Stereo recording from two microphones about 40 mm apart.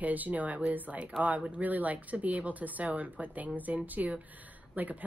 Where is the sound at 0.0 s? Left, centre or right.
Right.